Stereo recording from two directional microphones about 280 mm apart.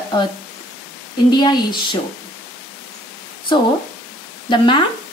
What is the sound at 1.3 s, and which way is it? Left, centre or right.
Speech, centre.